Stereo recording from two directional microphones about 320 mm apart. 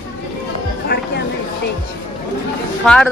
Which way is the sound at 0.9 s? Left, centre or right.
Left.